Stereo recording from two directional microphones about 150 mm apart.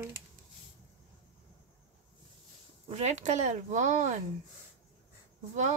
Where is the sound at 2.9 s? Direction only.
50° right (ahead or behind).